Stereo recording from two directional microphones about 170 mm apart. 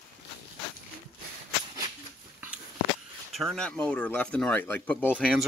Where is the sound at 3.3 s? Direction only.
5° left (ahead or behind).